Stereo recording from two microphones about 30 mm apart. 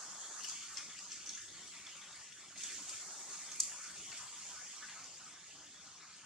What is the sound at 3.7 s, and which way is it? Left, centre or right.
Bathtub, centre.